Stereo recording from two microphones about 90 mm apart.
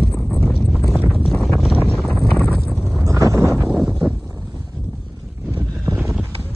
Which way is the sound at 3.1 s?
35° right (ahead or behind).